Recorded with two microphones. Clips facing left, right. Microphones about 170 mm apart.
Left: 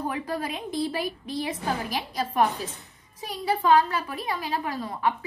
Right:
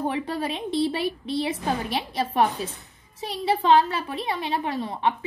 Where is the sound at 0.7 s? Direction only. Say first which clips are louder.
Right 5 dB; 75° right (ahead or behind).